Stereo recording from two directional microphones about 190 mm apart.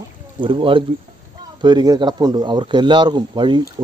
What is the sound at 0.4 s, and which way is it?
Speech, 25° right (ahead or behind).